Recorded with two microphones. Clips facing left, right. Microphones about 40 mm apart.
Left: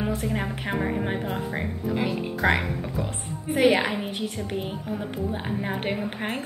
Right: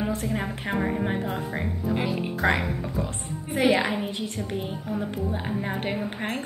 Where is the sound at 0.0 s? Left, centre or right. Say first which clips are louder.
Even; centre.